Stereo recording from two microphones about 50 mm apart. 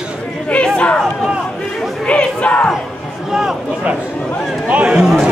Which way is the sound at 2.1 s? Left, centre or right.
Left.